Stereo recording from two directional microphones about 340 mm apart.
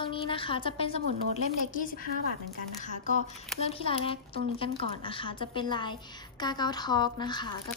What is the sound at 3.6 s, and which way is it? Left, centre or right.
A woman's voice, centre.